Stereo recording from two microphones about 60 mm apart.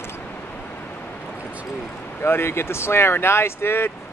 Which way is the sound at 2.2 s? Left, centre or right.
Left.